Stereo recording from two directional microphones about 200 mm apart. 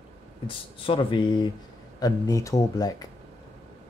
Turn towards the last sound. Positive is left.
turn(degrees=20)  # may be behind; listen again after turning